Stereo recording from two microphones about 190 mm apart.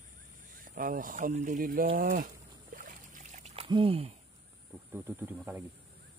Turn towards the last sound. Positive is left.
turn(degrees=-10)  # may be behind; listen again after turning